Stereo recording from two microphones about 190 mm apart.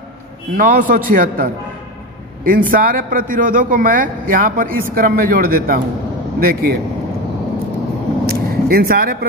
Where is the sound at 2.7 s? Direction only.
50° right (ahead or behind).